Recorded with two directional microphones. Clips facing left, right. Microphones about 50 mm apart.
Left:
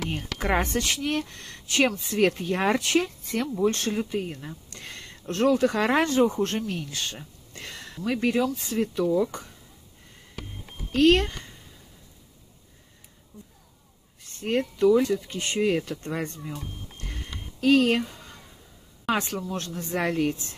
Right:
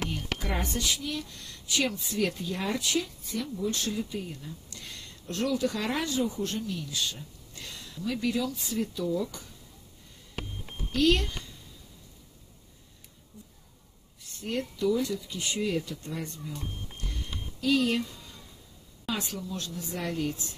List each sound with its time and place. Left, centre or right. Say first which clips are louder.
0.4 s speech: left 10 dB; left
10.9 s speech: left 5 dB; left
14.4 s speech: left 7 dB; left
17.1 s a sound: left 1 dB; left
19.0 s speech: left 7 dB; left